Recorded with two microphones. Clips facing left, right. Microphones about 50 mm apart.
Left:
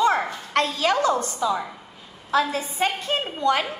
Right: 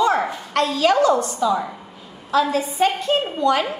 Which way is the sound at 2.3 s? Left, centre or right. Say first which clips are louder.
Right 3 dB; left.